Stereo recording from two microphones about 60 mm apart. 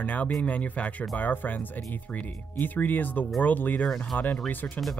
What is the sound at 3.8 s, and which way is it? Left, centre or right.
Speech, centre.